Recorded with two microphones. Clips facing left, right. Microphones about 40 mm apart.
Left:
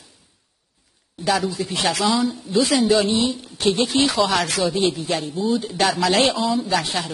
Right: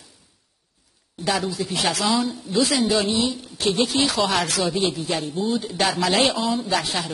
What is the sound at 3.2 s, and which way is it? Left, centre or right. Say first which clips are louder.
Speech: left 2 dB; left.